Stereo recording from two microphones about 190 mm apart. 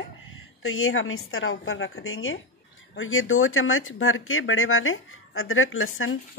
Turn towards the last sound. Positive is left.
turn(degrees=90)